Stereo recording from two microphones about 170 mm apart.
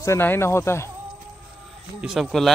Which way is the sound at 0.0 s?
15° left (ahead or behind).